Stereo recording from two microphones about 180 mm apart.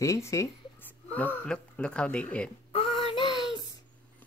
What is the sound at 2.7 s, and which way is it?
Child singing, 35° left (ahead or behind).